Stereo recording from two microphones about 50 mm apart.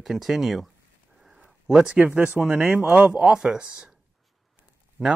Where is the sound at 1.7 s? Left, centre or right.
Centre.